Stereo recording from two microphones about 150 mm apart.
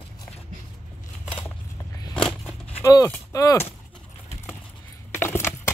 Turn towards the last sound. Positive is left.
turn(degrees=15)  # may be behind; listen again after turning